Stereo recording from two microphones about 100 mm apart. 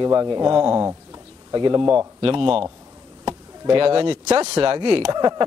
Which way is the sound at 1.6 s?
50° right (ahead or behind).